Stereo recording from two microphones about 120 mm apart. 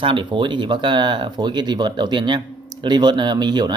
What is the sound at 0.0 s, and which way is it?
Speech, 45° right (ahead or behind).